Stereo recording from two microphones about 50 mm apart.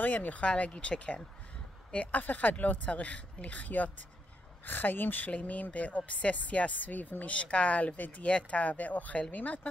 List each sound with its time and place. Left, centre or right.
0.0 s speech: left